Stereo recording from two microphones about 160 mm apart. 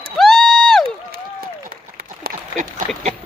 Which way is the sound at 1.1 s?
65° right (ahead or behind).